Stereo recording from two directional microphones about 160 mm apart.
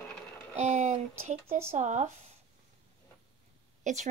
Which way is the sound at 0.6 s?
45° right (ahead or behind).